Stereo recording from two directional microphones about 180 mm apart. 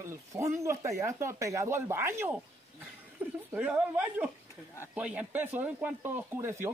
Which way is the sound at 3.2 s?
10° right (ahead or behind).